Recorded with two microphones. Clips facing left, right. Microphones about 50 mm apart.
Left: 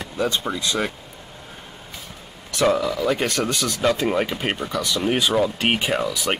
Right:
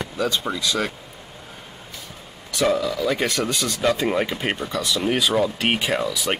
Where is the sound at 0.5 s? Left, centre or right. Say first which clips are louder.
Even; left.